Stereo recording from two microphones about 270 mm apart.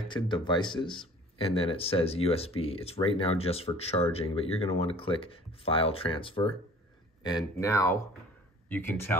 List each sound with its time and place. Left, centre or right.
0.1 s speech: centre